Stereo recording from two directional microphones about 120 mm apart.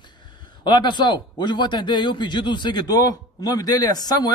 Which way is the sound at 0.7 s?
40° left (ahead or behind).